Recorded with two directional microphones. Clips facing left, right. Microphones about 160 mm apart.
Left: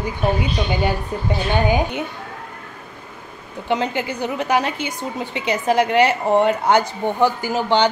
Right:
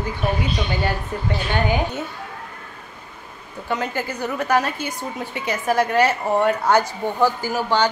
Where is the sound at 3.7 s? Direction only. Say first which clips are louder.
Left 4 dB; 20° left (ahead or behind).